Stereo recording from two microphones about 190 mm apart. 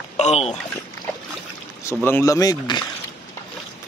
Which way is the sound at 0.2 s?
35° left (ahead or behind).